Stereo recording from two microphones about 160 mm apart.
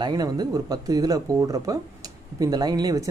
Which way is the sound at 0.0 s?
25° right (ahead or behind).